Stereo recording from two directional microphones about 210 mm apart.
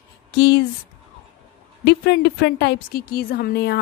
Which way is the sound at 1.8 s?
50° left (ahead or behind).